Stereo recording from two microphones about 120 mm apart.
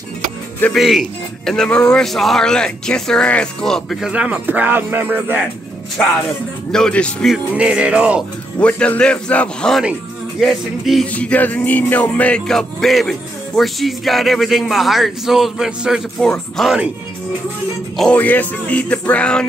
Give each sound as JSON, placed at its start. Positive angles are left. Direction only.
{"t": 0.7, "sound": "speech", "side_deg": 0}
{"t": 4.1, "sound": "speech", "side_deg": -10}
{"t": 6.7, "sound": "music", "side_deg": 5}
{"t": 7.5, "sound": "speech", "side_deg": -10}
{"t": 8.5, "sound": "music", "side_deg": 10}
{"t": 10.4, "sound": "speech", "side_deg": 0}
{"t": 11.1, "sound": "music", "side_deg": 10}
{"t": 13.6, "sound": "speech", "side_deg": 0}
{"t": 17.9, "sound": "music", "side_deg": 10}